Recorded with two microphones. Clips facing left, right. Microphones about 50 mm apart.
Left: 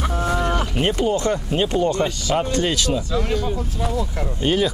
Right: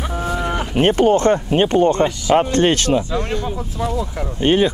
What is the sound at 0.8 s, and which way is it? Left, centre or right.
Speech, right.